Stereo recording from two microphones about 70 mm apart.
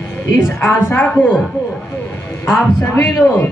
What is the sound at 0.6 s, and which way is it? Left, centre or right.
Speech, left.